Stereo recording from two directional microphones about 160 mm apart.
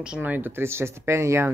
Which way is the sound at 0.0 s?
10° right (ahead or behind).